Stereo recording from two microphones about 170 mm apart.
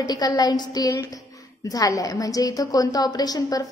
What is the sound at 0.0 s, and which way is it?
A woman's voice, 25° left (ahead or behind).